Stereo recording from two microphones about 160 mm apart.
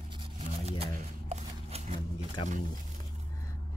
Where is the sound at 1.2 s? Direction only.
40° right (ahead or behind).